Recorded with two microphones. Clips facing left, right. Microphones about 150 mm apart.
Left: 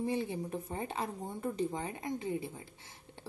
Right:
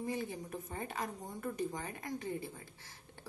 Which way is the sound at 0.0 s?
30° left (ahead or behind).